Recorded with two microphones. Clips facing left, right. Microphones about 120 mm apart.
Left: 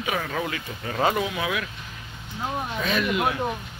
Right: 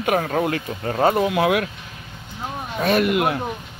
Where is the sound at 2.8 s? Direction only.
50° right (ahead or behind).